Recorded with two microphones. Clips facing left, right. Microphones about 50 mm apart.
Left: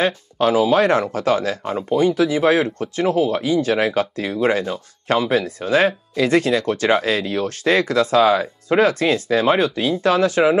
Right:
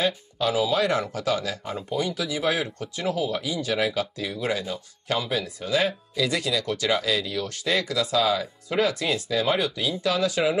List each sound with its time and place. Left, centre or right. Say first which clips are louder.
0.0 s speech: left 7 dB; left